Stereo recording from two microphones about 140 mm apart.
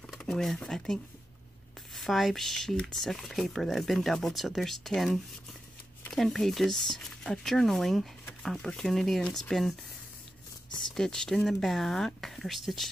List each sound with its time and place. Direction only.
0.0 s speech: 5° left (ahead or behind)
2.0 s speech: centre (ahead or behind)
11.0 s speech: 5° left (ahead or behind)